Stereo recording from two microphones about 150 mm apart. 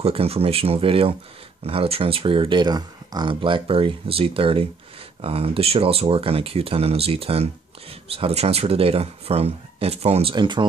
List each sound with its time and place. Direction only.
0.0 s speech: 40° right (ahead or behind)
10.3 s speech: 30° right (ahead or behind)